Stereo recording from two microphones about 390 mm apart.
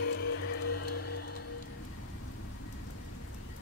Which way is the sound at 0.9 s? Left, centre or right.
Left.